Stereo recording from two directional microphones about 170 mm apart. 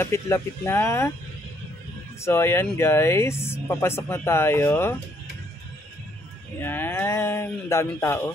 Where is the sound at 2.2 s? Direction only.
15° left (ahead or behind).